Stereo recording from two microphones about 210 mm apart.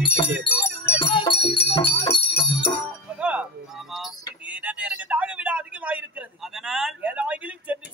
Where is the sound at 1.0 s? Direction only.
25° left (ahead or behind).